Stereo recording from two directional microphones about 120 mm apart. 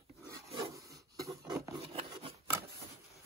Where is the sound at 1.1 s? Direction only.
30° right (ahead or behind).